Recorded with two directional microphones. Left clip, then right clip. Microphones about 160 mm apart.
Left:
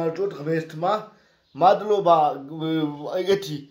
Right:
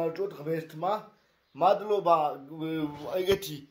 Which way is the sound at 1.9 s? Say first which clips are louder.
Left 7 dB; centre (ahead or behind).